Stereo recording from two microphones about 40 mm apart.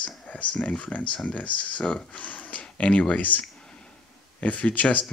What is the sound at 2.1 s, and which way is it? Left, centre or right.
Speech, left.